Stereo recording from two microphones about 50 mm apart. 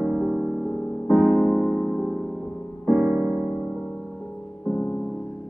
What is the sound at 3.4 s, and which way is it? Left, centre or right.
Music, centre.